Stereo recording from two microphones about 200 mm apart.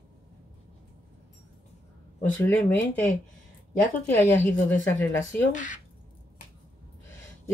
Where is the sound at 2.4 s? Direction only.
10° left (ahead or behind).